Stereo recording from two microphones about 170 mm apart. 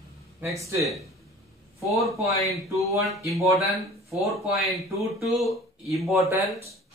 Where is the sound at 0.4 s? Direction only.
20° right (ahead or behind).